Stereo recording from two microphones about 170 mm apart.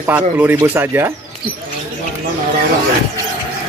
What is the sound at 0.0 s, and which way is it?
Speech, 10° right (ahead or behind).